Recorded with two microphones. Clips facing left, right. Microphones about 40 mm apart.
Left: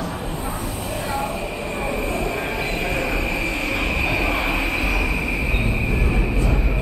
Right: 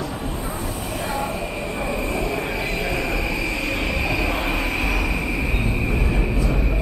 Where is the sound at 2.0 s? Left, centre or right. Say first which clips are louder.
Even; centre.